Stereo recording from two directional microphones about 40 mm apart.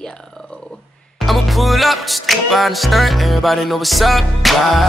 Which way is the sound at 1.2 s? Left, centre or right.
Centre.